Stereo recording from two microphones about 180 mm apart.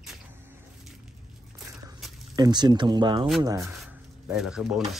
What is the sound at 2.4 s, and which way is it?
Speech, 25° right (ahead or behind).